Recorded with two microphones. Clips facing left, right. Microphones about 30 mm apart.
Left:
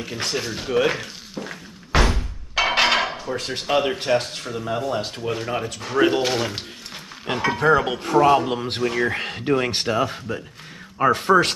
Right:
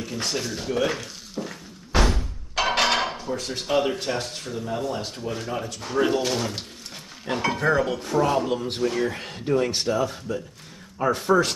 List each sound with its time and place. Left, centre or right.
0.0 s speech: left
1.9 s door: left
2.5 s music: left
3.3 s speech: left
7.7 s speech: left